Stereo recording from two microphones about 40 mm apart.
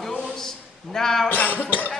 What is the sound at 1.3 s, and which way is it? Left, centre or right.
Speech, left.